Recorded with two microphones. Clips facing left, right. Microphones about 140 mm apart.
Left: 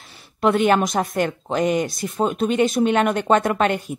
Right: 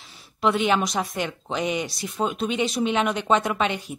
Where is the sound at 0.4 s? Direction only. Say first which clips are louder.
Left 4 dB; 50° left (ahead or behind).